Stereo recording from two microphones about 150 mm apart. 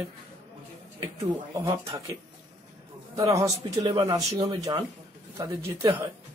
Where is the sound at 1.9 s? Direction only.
20° right (ahead or behind).